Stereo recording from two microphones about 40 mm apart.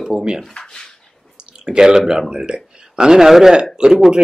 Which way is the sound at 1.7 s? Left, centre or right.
Centre.